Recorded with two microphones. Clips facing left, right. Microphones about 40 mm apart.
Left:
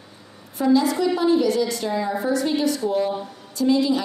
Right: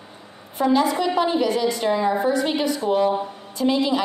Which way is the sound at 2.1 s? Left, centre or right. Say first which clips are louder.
Right 1 dB; right.